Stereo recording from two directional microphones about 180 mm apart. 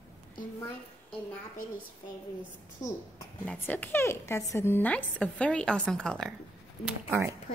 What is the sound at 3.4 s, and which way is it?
A woman's voice, 10° left (ahead or behind).